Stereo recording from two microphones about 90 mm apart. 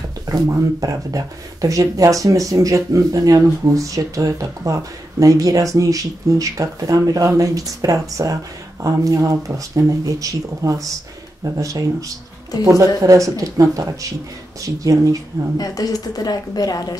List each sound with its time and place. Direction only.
0.3 s speech: 40° right (ahead or behind)
15.5 s speech: 45° left (ahead or behind)